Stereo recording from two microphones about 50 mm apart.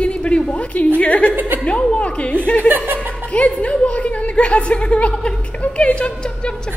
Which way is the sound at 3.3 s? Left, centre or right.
Left.